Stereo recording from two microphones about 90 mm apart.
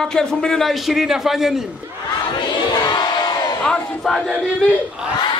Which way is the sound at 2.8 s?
55° left (ahead or behind).